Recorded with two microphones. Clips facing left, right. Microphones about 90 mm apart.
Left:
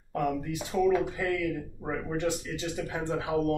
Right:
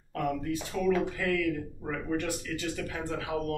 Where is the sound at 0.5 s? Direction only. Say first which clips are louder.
Left 4 dB; 15° left (ahead or behind).